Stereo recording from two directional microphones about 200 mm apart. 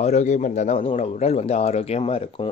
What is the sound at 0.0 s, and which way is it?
Speech, 35° left (ahead or behind).